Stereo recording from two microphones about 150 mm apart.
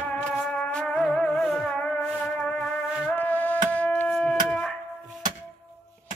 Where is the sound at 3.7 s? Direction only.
10° left (ahead or behind).